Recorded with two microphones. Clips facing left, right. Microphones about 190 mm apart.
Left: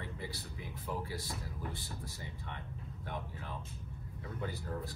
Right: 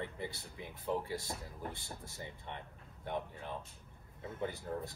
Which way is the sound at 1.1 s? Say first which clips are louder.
Right 1 dB; 55° right (ahead or behind).